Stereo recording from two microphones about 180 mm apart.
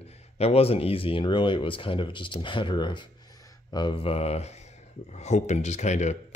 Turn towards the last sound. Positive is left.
turn(degrees=40)  # may be behind; listen again after turning